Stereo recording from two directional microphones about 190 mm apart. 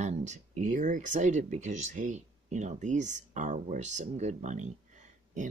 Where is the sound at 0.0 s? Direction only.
40° right (ahead or behind).